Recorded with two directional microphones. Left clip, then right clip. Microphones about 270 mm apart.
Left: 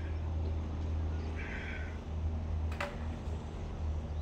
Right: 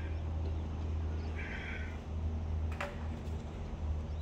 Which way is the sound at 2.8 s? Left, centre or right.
Left.